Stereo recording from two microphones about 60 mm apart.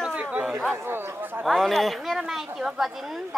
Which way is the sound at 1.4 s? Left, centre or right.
Centre.